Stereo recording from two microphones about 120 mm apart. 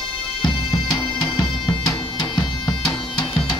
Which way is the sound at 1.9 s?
35° left (ahead or behind).